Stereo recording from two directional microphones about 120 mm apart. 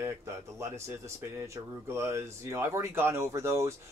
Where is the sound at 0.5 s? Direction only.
20° right (ahead or behind).